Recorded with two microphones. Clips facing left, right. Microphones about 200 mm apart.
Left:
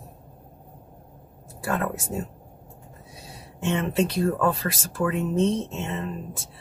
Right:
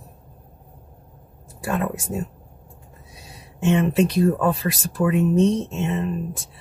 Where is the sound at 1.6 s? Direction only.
15° right (ahead or behind).